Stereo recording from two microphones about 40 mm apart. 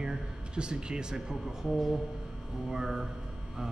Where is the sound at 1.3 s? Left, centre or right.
Centre.